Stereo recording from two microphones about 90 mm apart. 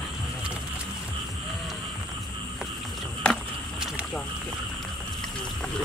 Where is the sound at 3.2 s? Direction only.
10° left (ahead or behind).